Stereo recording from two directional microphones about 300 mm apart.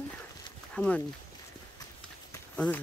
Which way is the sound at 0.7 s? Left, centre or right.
Centre.